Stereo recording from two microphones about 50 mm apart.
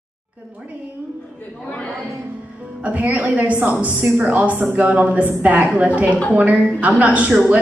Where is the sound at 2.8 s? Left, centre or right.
Right.